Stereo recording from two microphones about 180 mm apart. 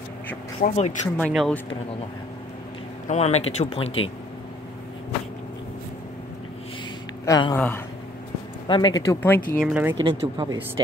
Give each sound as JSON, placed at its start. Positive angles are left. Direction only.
{"t": 0.6, "sound": "speech", "side_deg": 45}
{"t": 1.1, "sound": "speech", "side_deg": 5}
{"t": 3.1, "sound": "speech", "side_deg": 40}
{"t": 7.2, "sound": "speech", "side_deg": 25}
{"t": 7.5, "sound": "speech", "side_deg": 10}
{"t": 8.6, "sound": "speech", "side_deg": 25}
{"t": 9.6, "sound": "speech", "side_deg": -5}
{"t": 10.2, "sound": "speech", "side_deg": -25}